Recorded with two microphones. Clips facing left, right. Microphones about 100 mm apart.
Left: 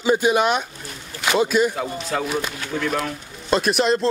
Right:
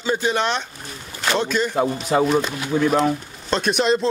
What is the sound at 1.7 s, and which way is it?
A man's voice, 25° right (ahead or behind).